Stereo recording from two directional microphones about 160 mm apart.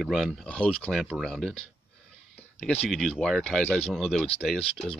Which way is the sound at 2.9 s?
Centre (ahead or behind).